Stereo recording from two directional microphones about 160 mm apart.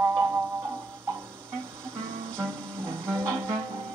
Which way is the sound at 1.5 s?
5° left (ahead or behind).